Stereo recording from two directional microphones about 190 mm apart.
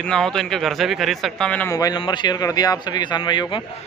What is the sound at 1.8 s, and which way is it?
Speech, 20° left (ahead or behind).